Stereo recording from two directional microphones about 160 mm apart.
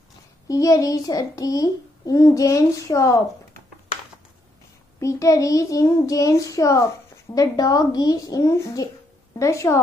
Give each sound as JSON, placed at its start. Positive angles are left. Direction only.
{"t": 0.5, "sound": "a child's voice", "side_deg": 20}
{"t": 5.0, "sound": "a child's voice", "side_deg": 20}